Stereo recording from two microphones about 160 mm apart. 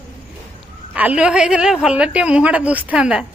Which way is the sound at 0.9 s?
10° right (ahead or behind).